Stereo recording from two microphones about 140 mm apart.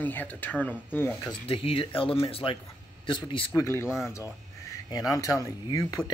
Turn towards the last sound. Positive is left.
turn(degrees=25)  # may be behind; listen again after turning